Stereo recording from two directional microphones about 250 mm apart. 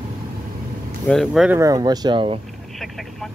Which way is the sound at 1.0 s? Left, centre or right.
Centre.